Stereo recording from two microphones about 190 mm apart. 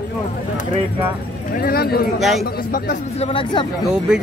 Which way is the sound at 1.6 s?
55° left (ahead or behind).